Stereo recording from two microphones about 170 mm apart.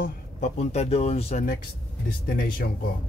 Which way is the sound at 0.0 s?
45° left (ahead or behind).